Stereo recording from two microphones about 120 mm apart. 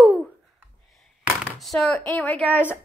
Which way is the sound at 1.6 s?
Centre (ahead or behind).